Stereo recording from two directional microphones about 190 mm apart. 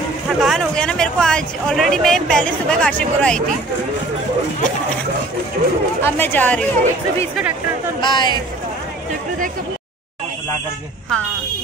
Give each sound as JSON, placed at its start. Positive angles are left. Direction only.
{"t": 0.4, "sound": "speech", "side_deg": 0}
{"t": 6.0, "sound": "speech", "side_deg": 10}
{"t": 8.0, "sound": "speech", "side_deg": 25}